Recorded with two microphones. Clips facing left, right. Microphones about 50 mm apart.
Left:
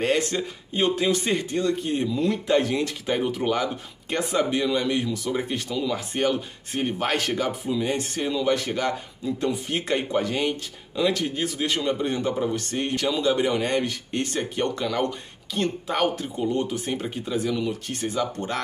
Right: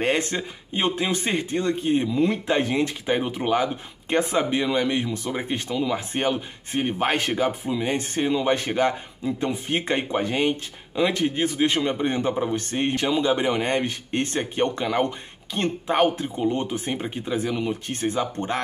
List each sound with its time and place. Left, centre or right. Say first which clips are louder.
0.0 s speech: even; right